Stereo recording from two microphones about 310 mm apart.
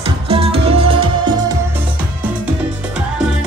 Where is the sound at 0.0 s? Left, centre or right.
Centre.